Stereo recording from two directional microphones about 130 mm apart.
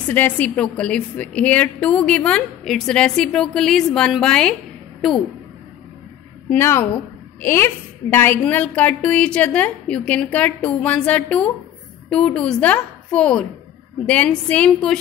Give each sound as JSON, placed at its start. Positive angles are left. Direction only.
{"t": 0.1, "sound": "a woman's voice", "side_deg": 10}
{"t": 6.5, "sound": "a woman's voice", "side_deg": 15}